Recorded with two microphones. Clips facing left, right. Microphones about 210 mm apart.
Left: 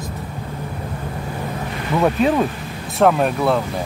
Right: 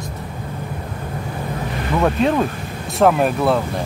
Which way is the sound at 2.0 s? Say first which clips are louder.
Left 1 dB; centre (ahead or behind).